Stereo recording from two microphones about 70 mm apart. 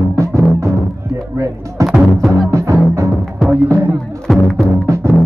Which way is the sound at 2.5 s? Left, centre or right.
Right.